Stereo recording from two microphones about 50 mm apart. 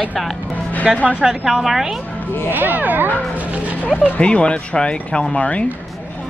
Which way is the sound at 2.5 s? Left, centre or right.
Right.